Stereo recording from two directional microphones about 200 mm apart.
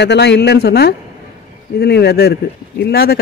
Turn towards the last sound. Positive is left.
turn(degrees=50)  # may be behind; listen again after turning